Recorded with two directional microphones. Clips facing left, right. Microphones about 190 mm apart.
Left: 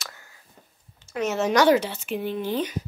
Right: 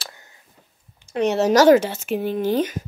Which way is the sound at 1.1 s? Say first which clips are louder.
Right 5 dB; 35° right (ahead or behind).